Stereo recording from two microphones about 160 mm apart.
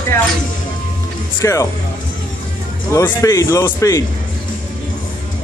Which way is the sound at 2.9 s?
20° left (ahead or behind).